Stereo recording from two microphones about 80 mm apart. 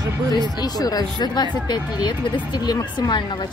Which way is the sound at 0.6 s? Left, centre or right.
Left.